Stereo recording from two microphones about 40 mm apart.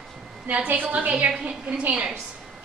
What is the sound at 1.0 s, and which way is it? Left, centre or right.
Speech, right.